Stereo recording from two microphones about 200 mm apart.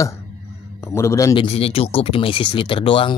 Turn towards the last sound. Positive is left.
turn(degrees=25)  # may be behind; listen again after turning